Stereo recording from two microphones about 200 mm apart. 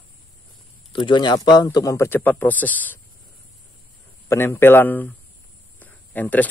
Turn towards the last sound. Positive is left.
turn(degrees=10)  # may be behind; listen again after turning